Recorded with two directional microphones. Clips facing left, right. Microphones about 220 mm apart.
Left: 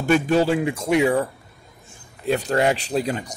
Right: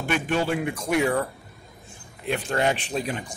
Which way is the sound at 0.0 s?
40° left (ahead or behind).